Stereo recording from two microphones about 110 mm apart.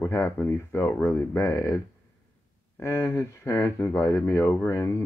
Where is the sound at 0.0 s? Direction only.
25° left (ahead or behind).